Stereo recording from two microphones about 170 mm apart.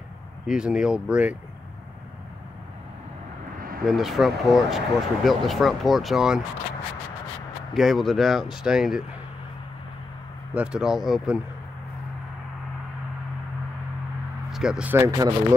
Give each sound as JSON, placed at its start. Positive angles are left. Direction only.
{"t": 0.5, "sound": "speech", "side_deg": -5}
{"t": 3.8, "sound": "speech", "side_deg": 0}
{"t": 7.7, "sound": "speech", "side_deg": 0}
{"t": 10.5, "sound": "speech", "side_deg": -5}
{"t": 14.5, "sound": "speech", "side_deg": -5}
{"t": 15.0, "sound": "speech", "side_deg": -20}